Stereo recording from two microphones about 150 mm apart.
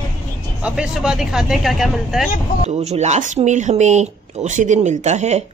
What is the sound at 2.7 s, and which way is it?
Speech, 50° right (ahead or behind).